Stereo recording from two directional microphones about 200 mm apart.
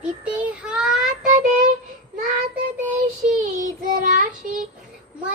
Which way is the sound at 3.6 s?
40° right (ahead or behind).